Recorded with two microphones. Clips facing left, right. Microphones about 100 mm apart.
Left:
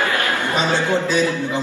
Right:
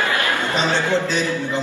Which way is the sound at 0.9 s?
15° left (ahead or behind).